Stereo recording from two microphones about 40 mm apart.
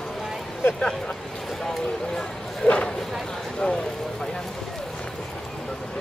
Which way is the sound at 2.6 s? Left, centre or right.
Left.